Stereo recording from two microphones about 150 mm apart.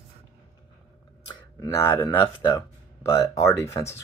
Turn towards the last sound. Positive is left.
turn(degrees=20)  # may be behind; listen again after turning